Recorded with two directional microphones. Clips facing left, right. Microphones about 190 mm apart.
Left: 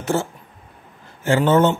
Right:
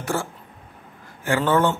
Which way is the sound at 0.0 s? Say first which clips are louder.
Left 4 dB; 25° left (ahead or behind).